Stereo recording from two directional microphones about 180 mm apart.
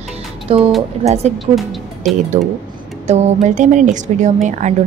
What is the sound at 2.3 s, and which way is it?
A woman's voice, 40° right (ahead or behind).